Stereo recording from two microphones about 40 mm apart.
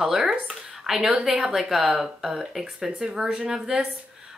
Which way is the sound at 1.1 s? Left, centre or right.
Right.